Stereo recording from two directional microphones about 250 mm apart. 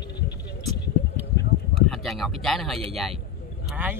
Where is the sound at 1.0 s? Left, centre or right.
Left.